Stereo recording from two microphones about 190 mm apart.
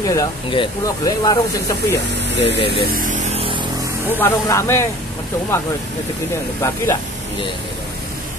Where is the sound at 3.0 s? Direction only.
40° right (ahead or behind).